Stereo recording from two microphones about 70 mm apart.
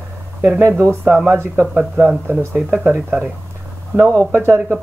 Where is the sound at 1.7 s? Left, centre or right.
Centre.